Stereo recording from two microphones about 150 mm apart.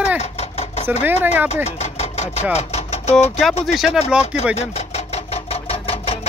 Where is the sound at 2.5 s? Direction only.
45° left (ahead or behind).